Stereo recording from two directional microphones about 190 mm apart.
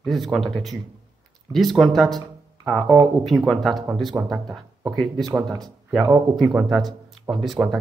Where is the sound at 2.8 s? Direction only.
25° right (ahead or behind).